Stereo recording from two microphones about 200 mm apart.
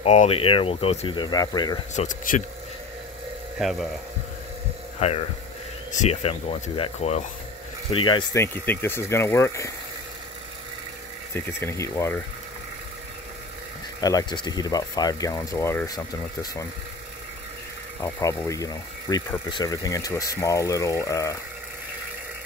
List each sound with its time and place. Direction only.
0.0 s speech: 30° left (ahead or behind)
2.0 s speech: 40° left (ahead or behind)
3.5 s speech: centre (ahead or behind)
5.0 s speech: 35° left (ahead or behind)
7.9 s speech: 25° left (ahead or behind)
11.3 s speech: 10° left (ahead or behind)
14.0 s speech: 20° left (ahead or behind)
18.0 s speech: 15° left (ahead or behind)